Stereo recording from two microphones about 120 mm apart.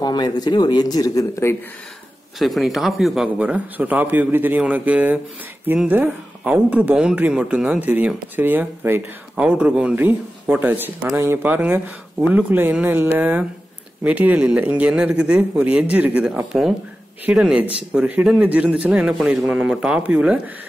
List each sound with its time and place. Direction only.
0.0 s a man's voice: 35° left (ahead or behind)
2.3 s speech: centre (ahead or behind)